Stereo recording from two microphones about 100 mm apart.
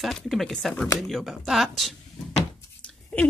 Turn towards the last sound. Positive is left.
turn(degrees=10)  # may be behind; listen again after turning